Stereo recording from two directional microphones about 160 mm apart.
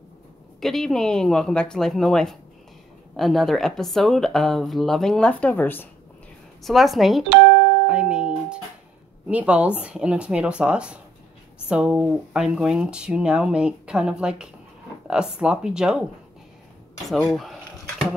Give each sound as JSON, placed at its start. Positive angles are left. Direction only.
{"t": 0.6, "sound": "speech", "side_deg": 0}
{"t": 6.6, "sound": "speech", "side_deg": 0}
{"t": 7.8, "sound": "music", "side_deg": -5}
{"t": 9.3, "sound": "speech", "side_deg": -10}
{"t": 17.3, "sound": "a sound", "side_deg": 0}